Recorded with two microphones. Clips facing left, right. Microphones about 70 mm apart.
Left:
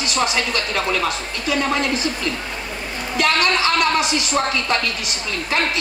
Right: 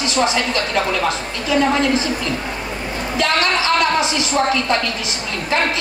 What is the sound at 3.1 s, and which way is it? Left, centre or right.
Speech, right.